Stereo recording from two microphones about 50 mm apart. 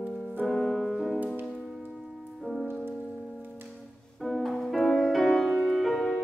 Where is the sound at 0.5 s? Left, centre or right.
Centre.